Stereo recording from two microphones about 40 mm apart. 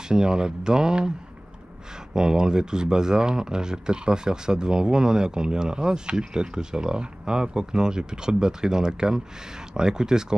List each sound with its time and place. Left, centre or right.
0.1 s speech: centre
2.1 s speech: centre